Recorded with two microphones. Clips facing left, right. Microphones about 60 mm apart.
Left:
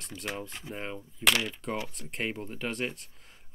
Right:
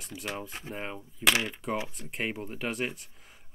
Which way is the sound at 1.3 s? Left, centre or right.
Right.